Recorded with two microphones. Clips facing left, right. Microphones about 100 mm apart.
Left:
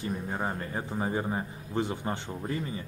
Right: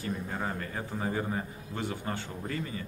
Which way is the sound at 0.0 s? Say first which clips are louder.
Left 2 dB; 25° left (ahead or behind).